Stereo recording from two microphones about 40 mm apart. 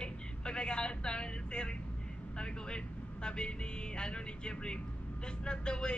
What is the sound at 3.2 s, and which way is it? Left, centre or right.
Vehicle, left.